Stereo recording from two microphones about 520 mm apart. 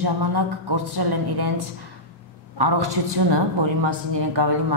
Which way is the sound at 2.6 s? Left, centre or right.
Right.